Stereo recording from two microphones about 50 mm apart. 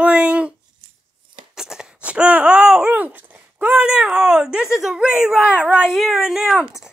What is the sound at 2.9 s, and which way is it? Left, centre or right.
Speech, right.